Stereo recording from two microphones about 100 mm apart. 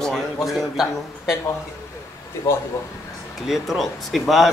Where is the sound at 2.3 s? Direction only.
25° left (ahead or behind).